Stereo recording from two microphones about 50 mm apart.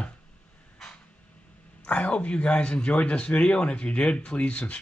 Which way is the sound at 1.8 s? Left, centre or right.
Left.